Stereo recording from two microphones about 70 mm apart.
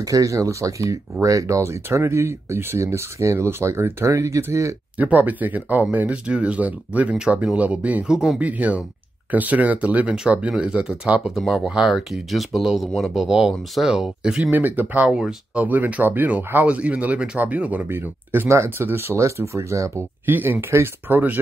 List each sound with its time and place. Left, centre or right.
0.0 s speech: right
4.9 s speech: right
8.1 s speech: centre
8.4 s speech: right
11.3 s speech: centre
14.5 s speech: right
15.1 s speech: centre
15.6 s speech: right
20.2 s speech: right